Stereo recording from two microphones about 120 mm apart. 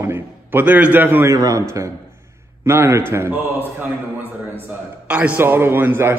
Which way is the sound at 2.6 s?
20° right (ahead or behind).